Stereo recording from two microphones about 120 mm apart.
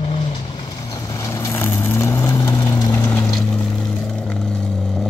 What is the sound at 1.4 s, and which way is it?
Vehicle, 20° left (ahead or behind).